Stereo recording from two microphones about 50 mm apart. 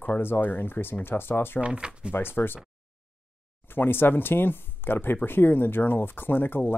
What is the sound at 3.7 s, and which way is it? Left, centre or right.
Speech, left.